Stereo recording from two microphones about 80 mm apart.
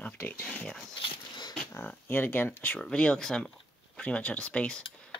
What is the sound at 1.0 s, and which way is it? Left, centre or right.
Dog, left.